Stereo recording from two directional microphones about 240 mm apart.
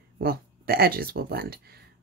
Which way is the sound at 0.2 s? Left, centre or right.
Right.